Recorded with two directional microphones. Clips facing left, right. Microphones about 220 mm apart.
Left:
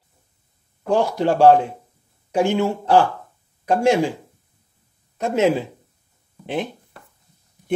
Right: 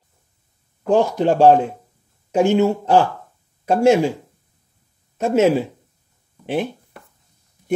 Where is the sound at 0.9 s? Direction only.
15° right (ahead or behind).